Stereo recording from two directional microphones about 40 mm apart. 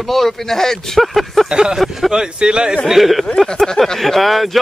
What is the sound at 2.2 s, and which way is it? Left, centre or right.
Speech, right.